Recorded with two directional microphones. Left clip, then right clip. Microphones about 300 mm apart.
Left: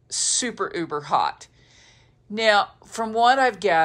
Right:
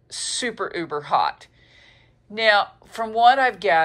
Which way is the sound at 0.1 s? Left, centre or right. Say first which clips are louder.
Left 1 dB; centre.